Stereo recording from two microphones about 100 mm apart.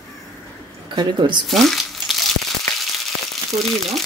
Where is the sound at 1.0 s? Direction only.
50° right (ahead or behind).